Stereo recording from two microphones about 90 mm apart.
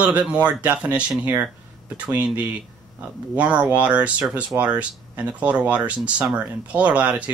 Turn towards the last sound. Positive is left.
turn(degrees=-15)  # may be behind; listen again after turning